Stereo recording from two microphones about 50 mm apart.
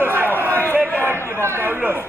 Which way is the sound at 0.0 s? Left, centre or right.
Right.